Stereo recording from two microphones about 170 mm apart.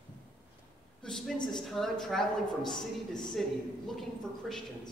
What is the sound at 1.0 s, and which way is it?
A woman's voice, centre (ahead or behind).